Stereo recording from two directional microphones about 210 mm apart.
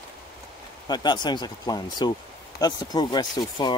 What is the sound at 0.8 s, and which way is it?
Speech, 20° left (ahead or behind).